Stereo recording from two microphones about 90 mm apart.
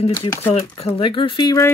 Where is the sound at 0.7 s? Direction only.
70° left (ahead or behind).